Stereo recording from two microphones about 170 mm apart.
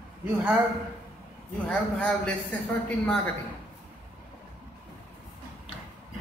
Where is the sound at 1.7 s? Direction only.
5° left (ahead or behind).